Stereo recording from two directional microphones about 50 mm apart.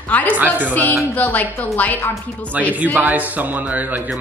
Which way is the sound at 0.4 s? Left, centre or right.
Right.